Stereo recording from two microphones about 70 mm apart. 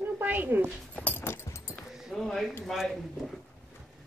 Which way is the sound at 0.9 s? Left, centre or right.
Left.